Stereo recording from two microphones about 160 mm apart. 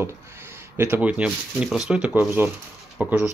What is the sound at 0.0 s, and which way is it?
Speech, 15° right (ahead or behind).